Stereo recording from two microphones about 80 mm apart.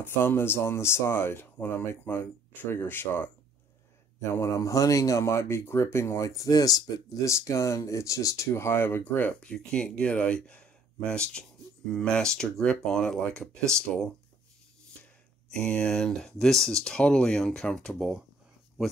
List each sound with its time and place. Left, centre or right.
0.0 s speech: left
4.2 s speech: left
7.2 s speech: left; by 14.1 s centre
15.5 s speech: centre